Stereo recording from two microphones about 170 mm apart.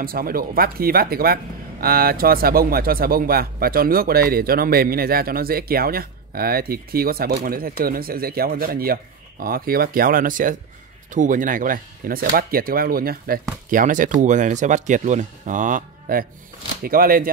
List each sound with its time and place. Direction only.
0.0 s speech: 60° right (ahead or behind)